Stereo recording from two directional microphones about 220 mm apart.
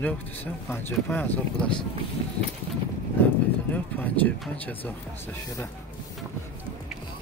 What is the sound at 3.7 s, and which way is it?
Speech, 5° left (ahead or behind).